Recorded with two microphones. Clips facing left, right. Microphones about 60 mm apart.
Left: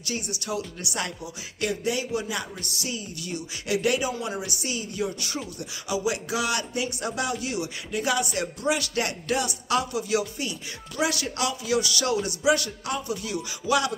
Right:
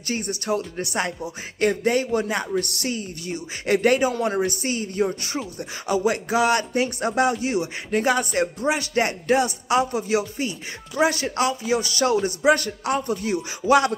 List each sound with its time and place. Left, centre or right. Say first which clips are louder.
0.0 s speech: right 5 dB; right